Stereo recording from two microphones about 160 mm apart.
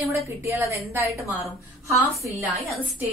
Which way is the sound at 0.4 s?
15° right (ahead or behind).